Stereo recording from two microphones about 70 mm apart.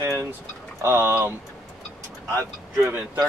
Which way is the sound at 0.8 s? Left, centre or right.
Right.